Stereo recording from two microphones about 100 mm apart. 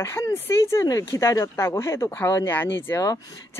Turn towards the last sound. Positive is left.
turn(degrees=20)  # may be behind; listen again after turning